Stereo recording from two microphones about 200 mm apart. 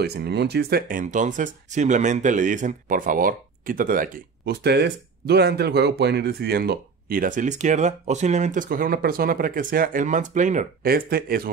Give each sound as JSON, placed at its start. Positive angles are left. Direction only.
{"t": 0.0, "sound": "speech", "side_deg": -55}